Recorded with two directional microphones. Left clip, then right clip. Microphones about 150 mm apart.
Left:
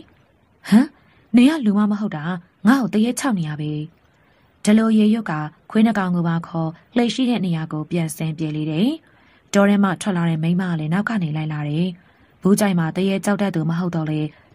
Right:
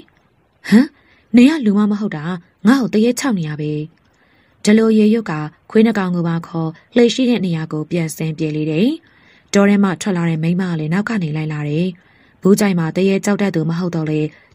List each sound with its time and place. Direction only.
0.6 s a woman's voice: 20° right (ahead or behind)